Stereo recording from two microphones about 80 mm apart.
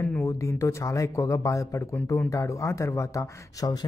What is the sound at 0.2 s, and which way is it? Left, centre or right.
Speech, left.